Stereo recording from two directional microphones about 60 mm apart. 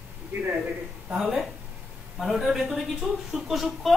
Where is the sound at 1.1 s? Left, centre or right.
Centre.